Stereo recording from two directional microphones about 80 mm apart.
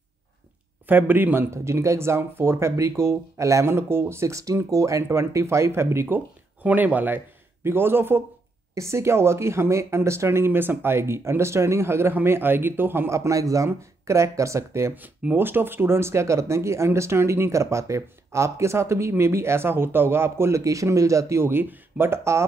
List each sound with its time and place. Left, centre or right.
0.8 s a man's voice: right
1.5 s speech: right
6.1 s a man's voice: right
15.0 s speech: right